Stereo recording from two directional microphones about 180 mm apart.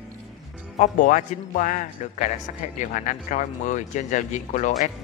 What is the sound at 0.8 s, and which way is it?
Speech, 45° left (ahead or behind).